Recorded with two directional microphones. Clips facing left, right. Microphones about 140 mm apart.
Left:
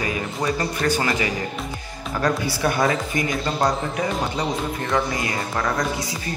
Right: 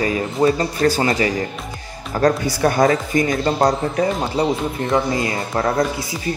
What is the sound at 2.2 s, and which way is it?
Speech, 45° right (ahead or behind).